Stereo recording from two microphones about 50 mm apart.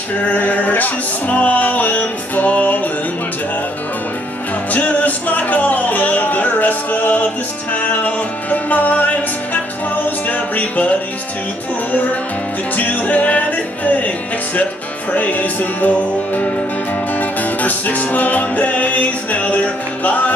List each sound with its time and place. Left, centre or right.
0.3 s music: left
4.7 s music: left